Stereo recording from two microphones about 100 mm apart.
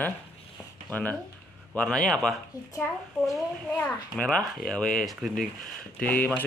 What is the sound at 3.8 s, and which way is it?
Speech, 10° left (ahead or behind).